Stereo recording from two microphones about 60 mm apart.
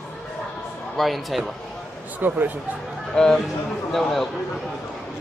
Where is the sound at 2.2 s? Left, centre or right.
Right.